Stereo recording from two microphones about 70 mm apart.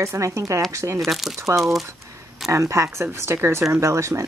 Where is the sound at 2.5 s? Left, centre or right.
Right.